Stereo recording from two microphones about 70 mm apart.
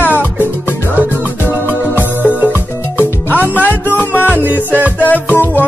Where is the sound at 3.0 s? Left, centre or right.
Left.